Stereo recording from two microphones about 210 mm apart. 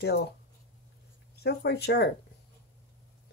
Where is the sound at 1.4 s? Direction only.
50° left (ahead or behind).